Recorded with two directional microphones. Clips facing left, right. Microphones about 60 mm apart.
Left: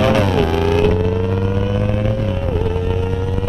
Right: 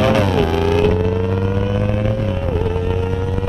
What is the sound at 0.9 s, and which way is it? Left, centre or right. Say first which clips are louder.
Vehicle: even; right.